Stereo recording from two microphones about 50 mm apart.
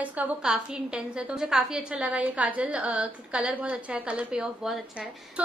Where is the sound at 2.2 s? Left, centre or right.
Right.